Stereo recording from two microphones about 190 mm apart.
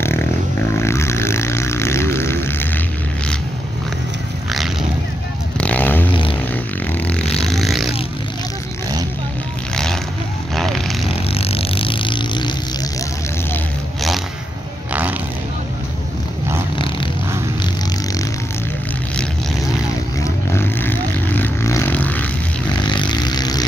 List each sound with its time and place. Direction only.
0.7 s a sound: 15° left (ahead or behind)
4.5 s vehicle: centre (ahead or behind)
6.9 s music: 5° left (ahead or behind)
10.5 s vehicle: centre (ahead or behind)
11.1 s vehicle: 30° left (ahead or behind)
14.9 s a sound: 10° right (ahead or behind)
16.7 s dog: 25° left (ahead or behind)
20.2 s vehicle: 10° left (ahead or behind)
22.8 s vehicle: 25° left (ahead or behind)